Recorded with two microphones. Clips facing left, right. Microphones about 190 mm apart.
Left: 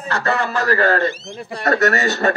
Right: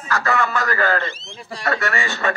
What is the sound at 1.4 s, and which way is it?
Speech, 55° left (ahead or behind).